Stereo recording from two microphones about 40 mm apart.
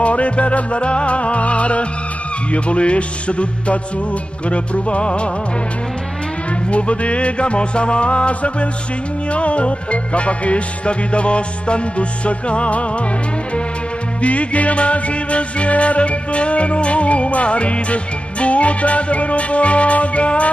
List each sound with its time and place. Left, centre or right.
0.0 s music: left
6.7 s music: left
14.2 s music: left